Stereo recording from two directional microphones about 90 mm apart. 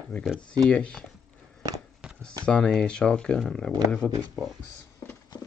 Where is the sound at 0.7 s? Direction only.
15° left (ahead or behind).